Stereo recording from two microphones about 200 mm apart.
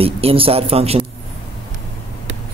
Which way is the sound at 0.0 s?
30° right (ahead or behind).